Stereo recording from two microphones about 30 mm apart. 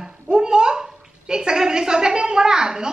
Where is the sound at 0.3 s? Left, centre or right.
Right.